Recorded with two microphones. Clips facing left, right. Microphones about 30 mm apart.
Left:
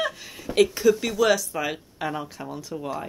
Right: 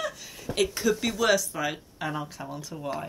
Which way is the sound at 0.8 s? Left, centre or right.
Centre.